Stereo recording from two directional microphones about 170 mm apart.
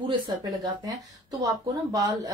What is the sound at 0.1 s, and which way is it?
A woman's voice, 25° right (ahead or behind).